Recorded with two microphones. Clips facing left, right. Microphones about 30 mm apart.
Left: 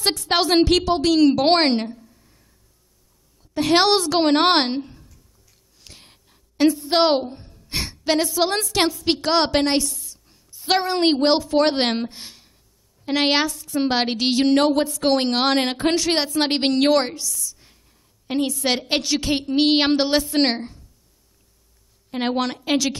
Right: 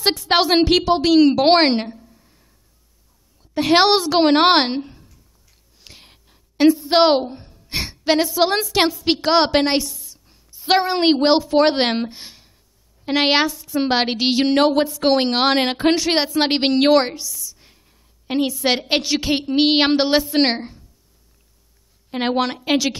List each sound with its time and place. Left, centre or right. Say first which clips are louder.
0.0 s a woman's voice: right 3 dB; centre
3.5 s speech: right 2 dB; centre
5.8 s a sound: right 2 dB; centre
6.9 s speech: right 3 dB; centre
7.5 s sigh: right 1 dB; centre
9.0 s a woman's voice: right 3 dB; centre
22.1 s speech: right 3 dB; centre